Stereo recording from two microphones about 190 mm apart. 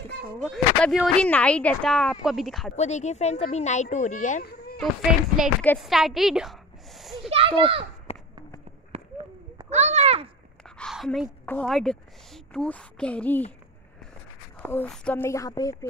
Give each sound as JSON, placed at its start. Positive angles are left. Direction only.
{"t": 0.4, "sound": "speech", "side_deg": 0}
{"t": 2.7, "sound": "speech", "side_deg": 35}
{"t": 5.4, "sound": "a woman's voice", "side_deg": 5}
{"t": 7.2, "sound": "a child's voice", "side_deg": -30}
{"t": 8.1, "sound": "a sound", "side_deg": 35}
{"t": 8.9, "sound": "a sound", "side_deg": -35}
{"t": 10.6, "sound": "a sound", "side_deg": 0}
{"t": 11.4, "sound": "speech", "side_deg": 5}
{"t": 14.6, "sound": "speech", "side_deg": 5}